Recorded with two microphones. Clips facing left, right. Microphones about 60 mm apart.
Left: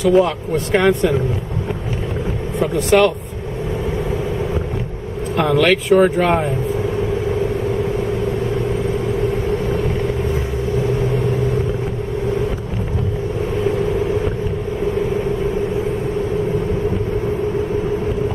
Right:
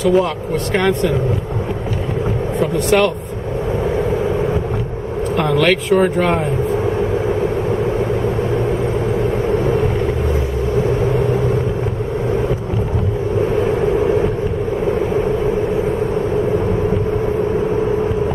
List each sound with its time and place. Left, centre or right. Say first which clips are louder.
0.0 s speech: left 1 dB; centre
0.7 s speech: left 2 dB; centre
2.6 s speech: left 1 dB; centre
5.3 s speech: left 1 dB; centre